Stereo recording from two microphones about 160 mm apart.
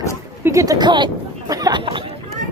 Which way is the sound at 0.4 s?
20° right (ahead or behind).